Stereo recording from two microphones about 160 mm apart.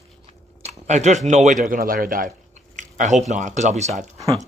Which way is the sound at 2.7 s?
50° right (ahead or behind).